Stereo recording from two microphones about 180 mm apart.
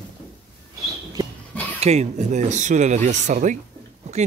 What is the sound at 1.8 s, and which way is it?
Speech, 40° right (ahead or behind).